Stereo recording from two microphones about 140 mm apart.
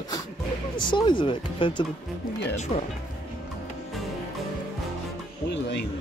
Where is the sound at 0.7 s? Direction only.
35° left (ahead or behind).